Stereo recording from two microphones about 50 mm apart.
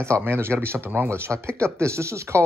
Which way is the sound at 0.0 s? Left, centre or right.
Right.